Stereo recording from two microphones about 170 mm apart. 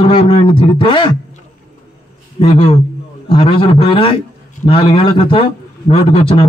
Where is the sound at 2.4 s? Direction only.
35° left (ahead or behind).